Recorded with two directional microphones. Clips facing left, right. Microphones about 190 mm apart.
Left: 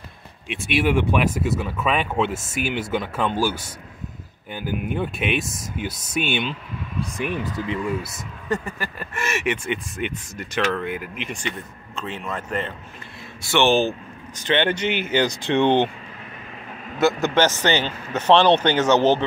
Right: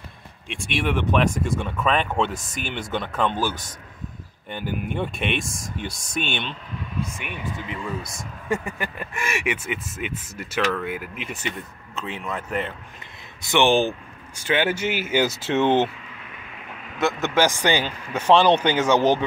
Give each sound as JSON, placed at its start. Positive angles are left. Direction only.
{"t": 0.5, "sound": "speech", "side_deg": 5}
{"t": 7.2, "sound": "speech", "side_deg": 35}
{"t": 8.6, "sound": "speech", "side_deg": -20}
{"t": 17.0, "sound": "speech", "side_deg": -5}